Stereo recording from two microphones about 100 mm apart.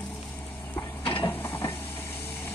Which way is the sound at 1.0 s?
60° left (ahead or behind).